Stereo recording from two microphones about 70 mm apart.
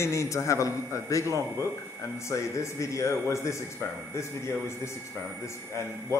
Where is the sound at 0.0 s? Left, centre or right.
Left.